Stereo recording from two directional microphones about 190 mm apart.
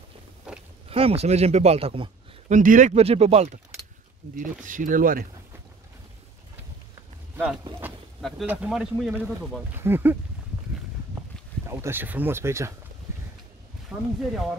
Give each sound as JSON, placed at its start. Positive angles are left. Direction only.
{"t": 0.5, "sound": "a sound", "side_deg": -5}
{"t": 0.8, "sound": "speech", "side_deg": -30}
{"t": 2.5, "sound": "speech", "side_deg": -45}
{"t": 4.4, "sound": "speech", "side_deg": -45}
{"t": 7.3, "sound": "speech", "side_deg": -5}
{"t": 11.6, "sound": "speech", "side_deg": -15}
{"t": 13.9, "sound": "speech", "side_deg": -15}